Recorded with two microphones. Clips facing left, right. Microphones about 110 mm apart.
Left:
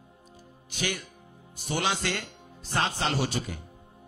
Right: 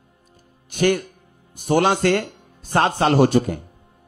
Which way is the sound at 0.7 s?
50° right (ahead or behind).